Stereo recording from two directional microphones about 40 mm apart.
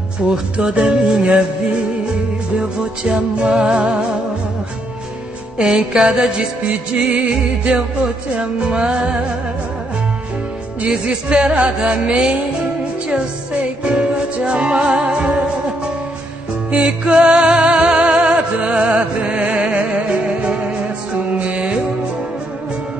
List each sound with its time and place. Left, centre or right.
0.6 s music: right
2.5 s music: right
5.6 s music: centre
10.9 s music: right
13.8 s music: right